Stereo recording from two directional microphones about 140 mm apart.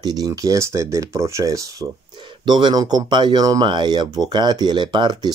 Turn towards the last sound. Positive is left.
turn(degrees=-35)  # may be behind; listen again after turning